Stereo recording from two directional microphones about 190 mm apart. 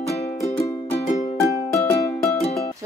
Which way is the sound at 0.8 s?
30° left (ahead or behind).